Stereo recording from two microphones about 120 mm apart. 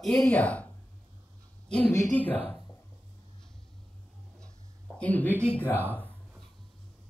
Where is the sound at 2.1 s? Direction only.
15° left (ahead or behind).